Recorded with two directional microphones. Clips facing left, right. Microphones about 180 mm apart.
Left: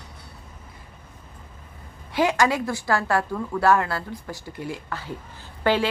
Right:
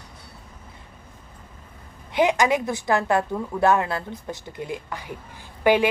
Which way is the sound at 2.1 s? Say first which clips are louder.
Right 1 dB; 20° right (ahead or behind).